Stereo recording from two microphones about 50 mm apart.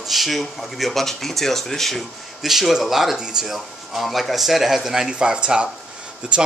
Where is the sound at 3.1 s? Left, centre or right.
Centre.